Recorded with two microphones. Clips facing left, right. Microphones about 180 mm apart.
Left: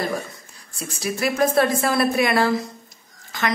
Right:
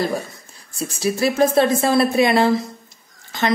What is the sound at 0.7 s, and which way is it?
A woman's voice, 30° right (ahead or behind).